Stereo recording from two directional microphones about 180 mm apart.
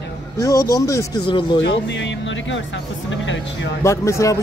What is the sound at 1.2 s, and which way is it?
Speech, 30° left (ahead or behind).